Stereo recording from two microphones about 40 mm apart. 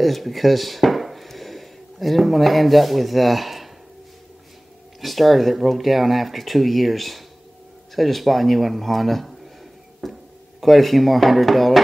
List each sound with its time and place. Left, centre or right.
0.0 s speech: centre
5.0 s speech: centre
10.0 s music: centre
10.6 s speech: centre